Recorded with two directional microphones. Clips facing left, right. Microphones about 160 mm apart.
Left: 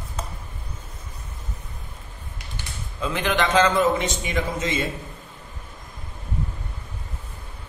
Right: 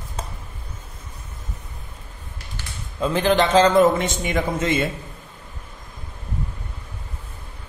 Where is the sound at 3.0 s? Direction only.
35° right (ahead or behind).